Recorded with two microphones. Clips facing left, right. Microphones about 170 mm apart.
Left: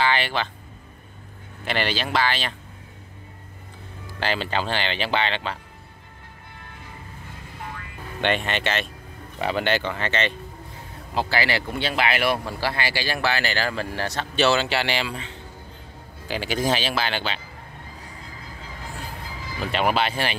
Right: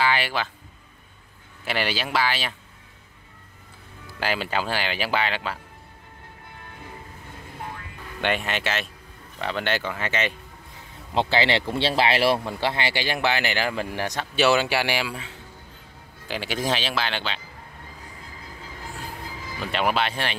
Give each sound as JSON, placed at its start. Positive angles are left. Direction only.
{"t": 0.0, "sound": "speech", "side_deg": -5}
{"t": 1.6, "sound": "speech", "side_deg": -5}
{"t": 4.2, "sound": "speech", "side_deg": -10}
{"t": 8.2, "sound": "speech", "side_deg": -5}
{"t": 11.1, "sound": "speech", "side_deg": -20}
{"t": 19.6, "sound": "speech", "side_deg": 0}